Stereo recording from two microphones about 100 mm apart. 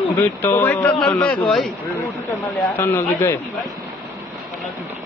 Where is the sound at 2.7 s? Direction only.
20° left (ahead or behind).